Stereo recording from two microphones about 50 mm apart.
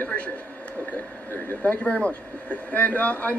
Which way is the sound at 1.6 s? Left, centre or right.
Left.